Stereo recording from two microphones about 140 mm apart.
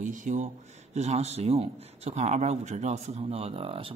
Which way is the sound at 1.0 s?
50° right (ahead or behind).